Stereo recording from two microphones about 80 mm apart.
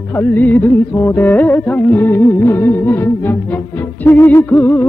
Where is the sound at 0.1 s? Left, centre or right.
Left.